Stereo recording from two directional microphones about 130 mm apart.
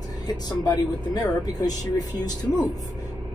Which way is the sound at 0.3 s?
30° left (ahead or behind).